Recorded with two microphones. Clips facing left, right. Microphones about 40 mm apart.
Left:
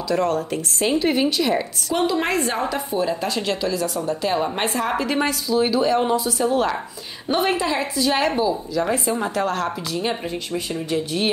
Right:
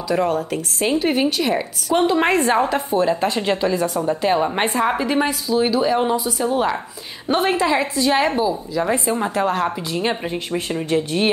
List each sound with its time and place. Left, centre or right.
0.1 s a woman's voice: centre
0.4 s a woman's voice: centre
2.0 s a woman's voice: right
4.1 s a woman's voice: right
7.2 s speech: right
8.0 s a woman's voice: centre
9.9 s speech: right